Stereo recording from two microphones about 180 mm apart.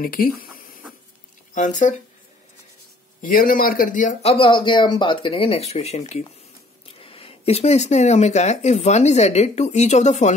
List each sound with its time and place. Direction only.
0.0 s speech: 50° left (ahead or behind)
3.2 s speech: 50° left (ahead or behind)